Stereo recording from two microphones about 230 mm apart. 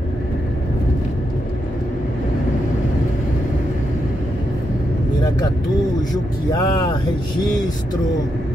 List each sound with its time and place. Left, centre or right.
6.1 s speech: centre